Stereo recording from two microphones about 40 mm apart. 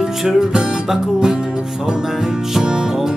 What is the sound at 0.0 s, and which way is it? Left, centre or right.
Music, centre.